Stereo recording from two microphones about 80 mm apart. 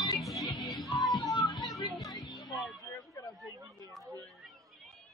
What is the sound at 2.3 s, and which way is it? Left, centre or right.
Music, centre.